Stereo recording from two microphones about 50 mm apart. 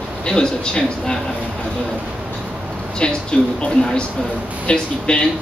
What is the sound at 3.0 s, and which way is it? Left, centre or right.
Speech, centre.